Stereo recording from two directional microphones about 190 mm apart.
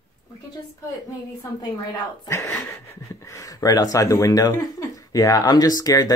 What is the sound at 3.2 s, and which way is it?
Speech, 15° left (ahead or behind).